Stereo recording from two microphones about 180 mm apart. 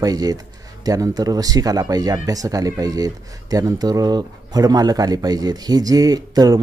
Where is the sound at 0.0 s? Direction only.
20° right (ahead or behind).